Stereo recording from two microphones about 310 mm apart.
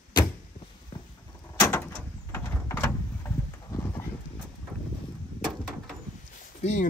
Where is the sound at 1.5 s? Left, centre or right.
Centre.